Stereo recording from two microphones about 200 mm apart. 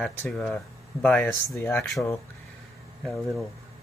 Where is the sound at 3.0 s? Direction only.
Centre (ahead or behind).